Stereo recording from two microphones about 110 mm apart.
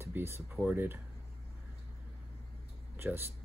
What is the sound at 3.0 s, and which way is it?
Speech, 20° right (ahead or behind).